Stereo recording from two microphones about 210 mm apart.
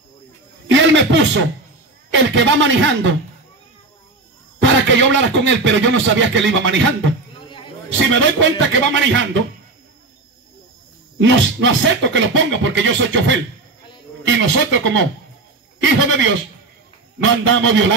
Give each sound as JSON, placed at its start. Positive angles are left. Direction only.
{"t": 0.7, "sound": "a sound", "side_deg": -60}
{"t": 2.1, "sound": "speech", "side_deg": -60}
{"t": 4.6, "sound": "speech", "side_deg": -60}
{"t": 7.3, "sound": "a sound", "side_deg": 25}
{"t": 8.1, "sound": "speech", "side_deg": -60}
{"t": 11.1, "sound": "speech", "side_deg": -60}